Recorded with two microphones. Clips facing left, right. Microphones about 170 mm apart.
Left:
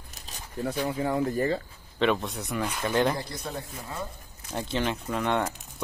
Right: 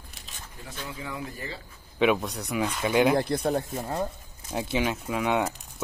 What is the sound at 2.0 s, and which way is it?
Speech, 5° right (ahead or behind).